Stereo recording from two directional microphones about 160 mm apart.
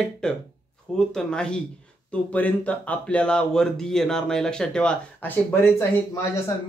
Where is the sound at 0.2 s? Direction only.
5° left (ahead or behind).